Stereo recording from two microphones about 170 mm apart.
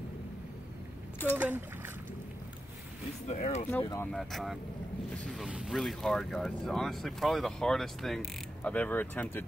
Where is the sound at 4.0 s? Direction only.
Centre (ahead or behind).